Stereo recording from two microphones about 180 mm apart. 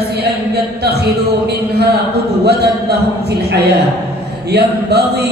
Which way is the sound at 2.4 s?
65° right (ahead or behind).